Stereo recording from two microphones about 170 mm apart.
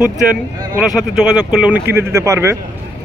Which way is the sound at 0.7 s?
5° right (ahead or behind).